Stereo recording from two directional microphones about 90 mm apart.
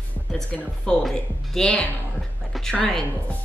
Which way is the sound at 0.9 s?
5° left (ahead or behind).